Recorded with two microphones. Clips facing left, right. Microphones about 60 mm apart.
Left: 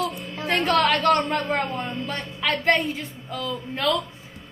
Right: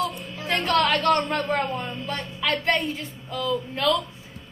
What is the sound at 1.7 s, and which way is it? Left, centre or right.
Speech, left.